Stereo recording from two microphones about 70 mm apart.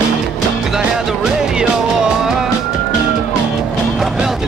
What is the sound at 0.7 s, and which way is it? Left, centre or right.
Music, centre.